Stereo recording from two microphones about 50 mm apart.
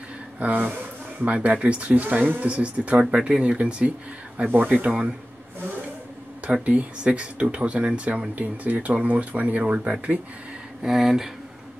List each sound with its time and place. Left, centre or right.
0.4 s speech: right
6.6 s speech: right
10.8 s speech: centre